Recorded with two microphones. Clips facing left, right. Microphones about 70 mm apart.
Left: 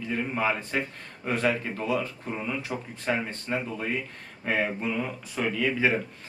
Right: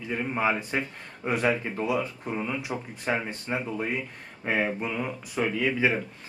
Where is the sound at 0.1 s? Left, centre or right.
Centre.